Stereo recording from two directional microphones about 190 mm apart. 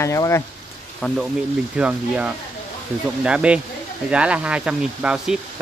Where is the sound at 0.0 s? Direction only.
15° left (ahead or behind).